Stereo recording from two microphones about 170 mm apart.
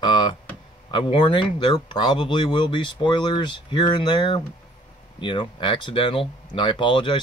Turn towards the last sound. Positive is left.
turn(degrees=30)  # may be behind; listen again after turning